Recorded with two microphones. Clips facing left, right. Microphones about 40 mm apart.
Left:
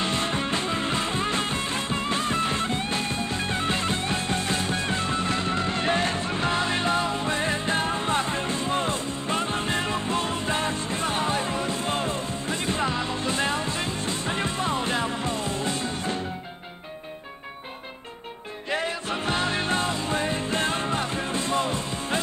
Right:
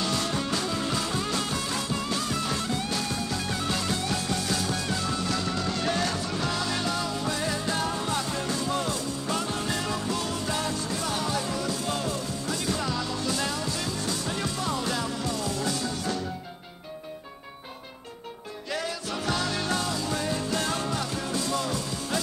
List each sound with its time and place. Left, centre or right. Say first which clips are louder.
0.0 s music: left 2 dB; left
18.7 s music: left 4 dB; left